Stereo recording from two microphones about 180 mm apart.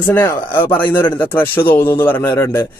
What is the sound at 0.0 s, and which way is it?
A man's voice, 15° left (ahead or behind).